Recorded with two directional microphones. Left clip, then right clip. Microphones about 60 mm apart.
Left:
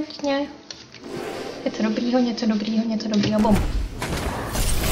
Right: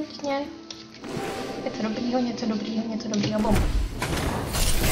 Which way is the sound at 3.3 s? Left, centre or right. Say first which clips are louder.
Left 4 dB; centre.